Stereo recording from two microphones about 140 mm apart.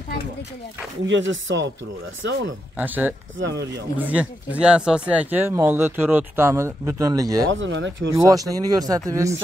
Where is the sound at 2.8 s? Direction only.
15° right (ahead or behind).